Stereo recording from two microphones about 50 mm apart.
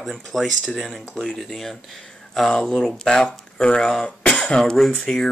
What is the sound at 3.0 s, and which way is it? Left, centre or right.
Speech, centre.